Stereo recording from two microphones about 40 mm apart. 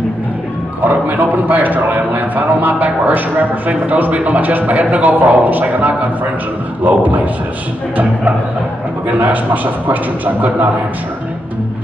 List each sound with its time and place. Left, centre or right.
0.8 s a man's voice: right
9.2 s a man's voice: right